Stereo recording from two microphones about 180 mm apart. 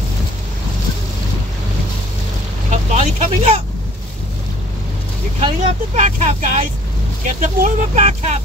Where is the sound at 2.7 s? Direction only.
35° right (ahead or behind).